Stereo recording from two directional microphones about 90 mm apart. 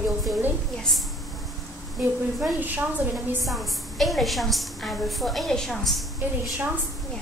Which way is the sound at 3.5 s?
Centre (ahead or behind).